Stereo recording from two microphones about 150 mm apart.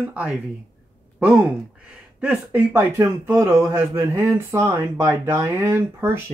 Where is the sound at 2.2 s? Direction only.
10° right (ahead or behind).